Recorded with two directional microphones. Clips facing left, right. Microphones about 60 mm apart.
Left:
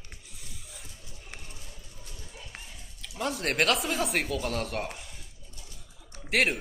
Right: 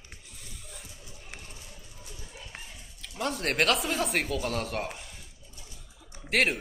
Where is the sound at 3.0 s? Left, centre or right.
Centre.